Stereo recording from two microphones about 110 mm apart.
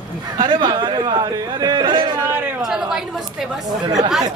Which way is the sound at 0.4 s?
40° right (ahead or behind).